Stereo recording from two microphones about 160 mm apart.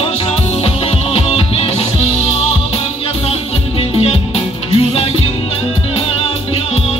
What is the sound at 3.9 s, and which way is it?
Music, 40° left (ahead or behind).